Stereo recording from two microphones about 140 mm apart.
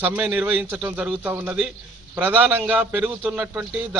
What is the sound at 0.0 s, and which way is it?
A man's voice, 10° right (ahead or behind).